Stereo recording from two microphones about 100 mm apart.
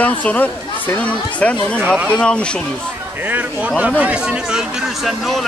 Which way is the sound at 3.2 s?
20° right (ahead or behind).